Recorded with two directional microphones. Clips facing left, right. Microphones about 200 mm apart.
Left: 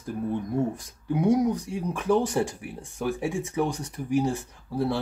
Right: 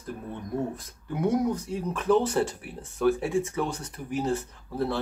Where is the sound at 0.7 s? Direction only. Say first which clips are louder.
Left 5 dB; 15° left (ahead or behind).